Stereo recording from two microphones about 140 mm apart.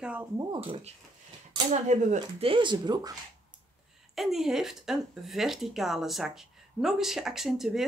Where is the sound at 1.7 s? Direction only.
60° right (ahead or behind).